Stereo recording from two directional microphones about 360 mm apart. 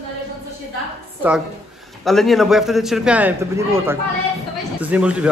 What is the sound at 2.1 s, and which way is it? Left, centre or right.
A man's voice, centre.